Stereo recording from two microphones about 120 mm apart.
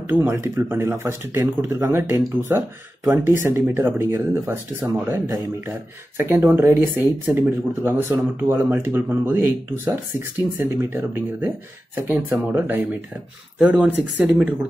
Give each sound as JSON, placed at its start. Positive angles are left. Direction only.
{"t": 0.1, "sound": "speech", "side_deg": -15}